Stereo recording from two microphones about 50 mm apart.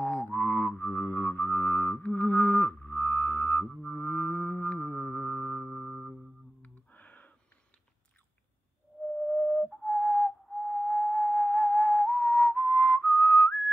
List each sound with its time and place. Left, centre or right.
0.0 s music: left
5.7 s music: centre
6.6 s a sound: left
9.4 s whistle: left
10.5 s whistling: left